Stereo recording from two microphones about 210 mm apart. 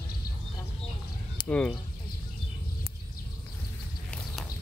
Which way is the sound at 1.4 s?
5° left (ahead or behind).